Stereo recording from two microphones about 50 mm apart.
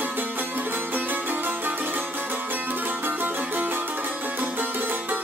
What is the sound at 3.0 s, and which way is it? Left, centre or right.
Music, right.